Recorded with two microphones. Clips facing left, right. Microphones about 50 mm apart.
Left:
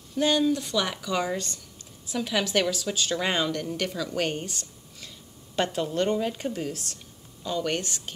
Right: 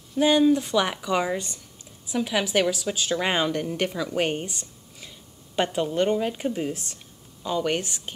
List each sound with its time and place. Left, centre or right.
0.1 s a woman's voice: centre